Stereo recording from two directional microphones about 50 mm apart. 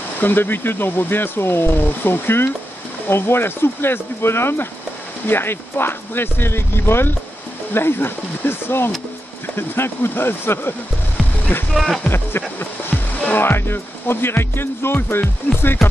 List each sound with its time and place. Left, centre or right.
0.2 s speech: left
11.7 s speech: centre
12.1 s music: left
13.4 s speech: left
15.8 s speech: centre